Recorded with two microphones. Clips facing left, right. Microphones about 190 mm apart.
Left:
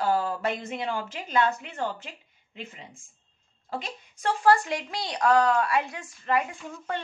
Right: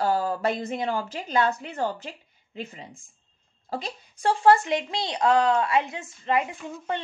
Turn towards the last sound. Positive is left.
turn(degrees=-20)  # may be behind; listen again after turning